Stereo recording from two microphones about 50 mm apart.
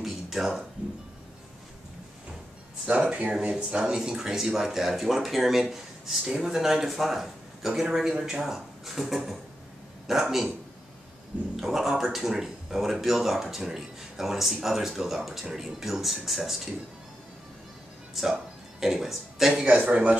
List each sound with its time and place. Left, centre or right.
0.0 s a sound: centre
2.9 s speech: right; by 10.5 s centre
11.6 s speech: centre
18.1 s speech: centre
19.7 s speech: right